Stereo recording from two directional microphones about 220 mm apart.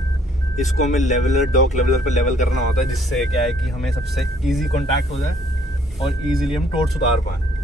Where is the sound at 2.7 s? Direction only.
Centre (ahead or behind).